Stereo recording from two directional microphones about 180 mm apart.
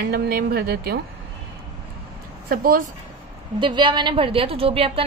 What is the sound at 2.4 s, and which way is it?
Speech, 55° right (ahead or behind).